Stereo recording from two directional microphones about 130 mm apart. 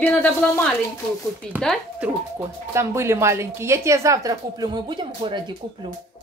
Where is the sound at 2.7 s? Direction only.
20° right (ahead or behind); by 5.5 s 35° right (ahead or behind).